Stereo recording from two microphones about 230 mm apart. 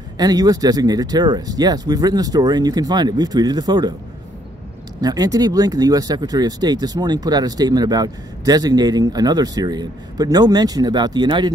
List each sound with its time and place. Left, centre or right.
0.2 s speech: centre
5.0 s speech: centre